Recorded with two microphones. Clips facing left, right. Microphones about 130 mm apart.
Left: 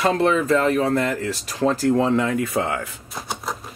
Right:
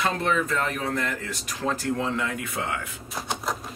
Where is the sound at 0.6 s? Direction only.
35° left (ahead or behind).